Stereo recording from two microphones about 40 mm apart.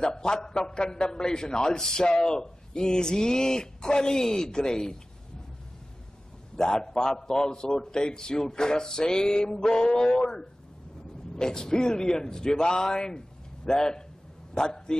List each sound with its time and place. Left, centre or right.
0.0 s a man's voice: centre
6.5 s a man's voice: centre